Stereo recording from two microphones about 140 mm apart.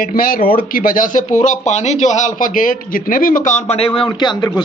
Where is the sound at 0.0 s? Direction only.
90° left.